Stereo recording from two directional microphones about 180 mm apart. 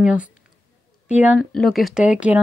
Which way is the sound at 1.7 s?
Centre (ahead or behind).